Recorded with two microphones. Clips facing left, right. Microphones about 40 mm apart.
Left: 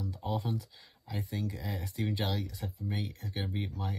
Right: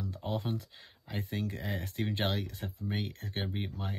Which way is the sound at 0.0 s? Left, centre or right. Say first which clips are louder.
Even; right.